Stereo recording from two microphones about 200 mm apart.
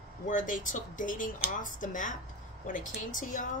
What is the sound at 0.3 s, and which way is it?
A woman's voice, 40° left (ahead or behind).